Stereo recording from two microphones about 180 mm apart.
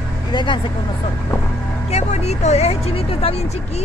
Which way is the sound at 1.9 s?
35° left (ahead or behind).